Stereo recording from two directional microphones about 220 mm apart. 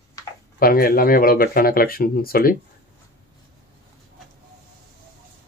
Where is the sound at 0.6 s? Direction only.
40° left (ahead or behind).